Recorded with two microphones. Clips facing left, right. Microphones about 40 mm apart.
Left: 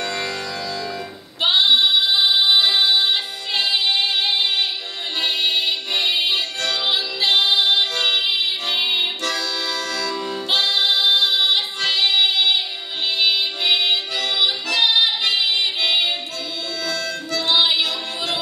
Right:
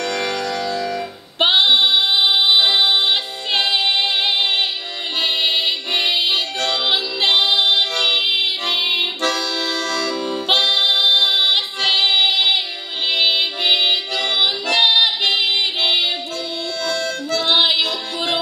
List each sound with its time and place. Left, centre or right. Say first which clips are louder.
0.0 s music: right 4 dB; right
11.1 s child singing: right 2 dB; right
13.1 s music: right 2 dB; right